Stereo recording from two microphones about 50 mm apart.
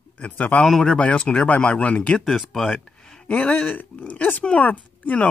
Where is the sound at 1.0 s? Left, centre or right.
Left.